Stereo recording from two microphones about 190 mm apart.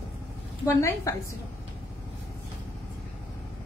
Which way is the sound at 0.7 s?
15° left (ahead or behind).